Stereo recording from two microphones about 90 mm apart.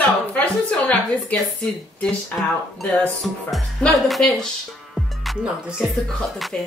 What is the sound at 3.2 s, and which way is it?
Speech, centre (ahead or behind).